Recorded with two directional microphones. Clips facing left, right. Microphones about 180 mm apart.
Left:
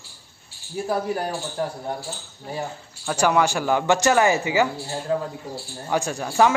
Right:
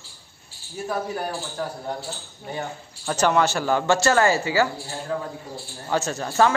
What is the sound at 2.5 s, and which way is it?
A man's voice, 5° left (ahead or behind).